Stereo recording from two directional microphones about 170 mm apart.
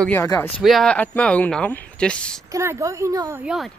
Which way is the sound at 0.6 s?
Centre (ahead or behind).